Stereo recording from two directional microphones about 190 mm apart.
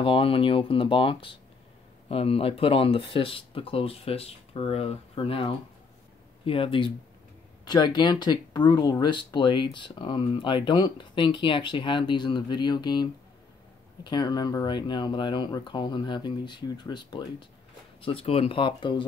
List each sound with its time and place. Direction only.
0.0 s speech: 30° left (ahead or behind)